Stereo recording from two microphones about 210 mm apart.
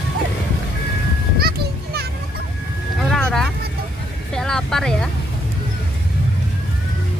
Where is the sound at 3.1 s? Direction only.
Centre (ahead or behind).